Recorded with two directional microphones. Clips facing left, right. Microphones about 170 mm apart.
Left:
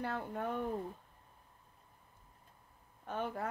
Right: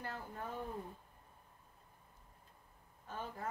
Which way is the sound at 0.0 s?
65° left (ahead or behind).